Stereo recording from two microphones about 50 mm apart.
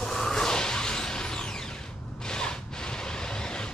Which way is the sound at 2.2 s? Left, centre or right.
Centre.